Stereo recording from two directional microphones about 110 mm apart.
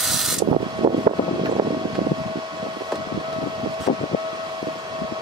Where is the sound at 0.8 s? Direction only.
45° right (ahead or behind).